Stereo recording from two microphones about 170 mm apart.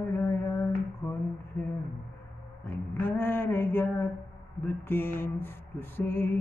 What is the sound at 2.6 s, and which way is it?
Mantra, 15° left (ahead or behind).